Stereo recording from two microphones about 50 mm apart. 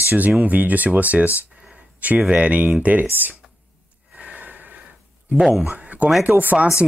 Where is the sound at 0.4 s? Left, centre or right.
Right.